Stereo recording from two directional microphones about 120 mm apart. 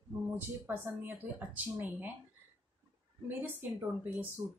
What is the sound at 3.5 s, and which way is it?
Speech, 15° right (ahead or behind).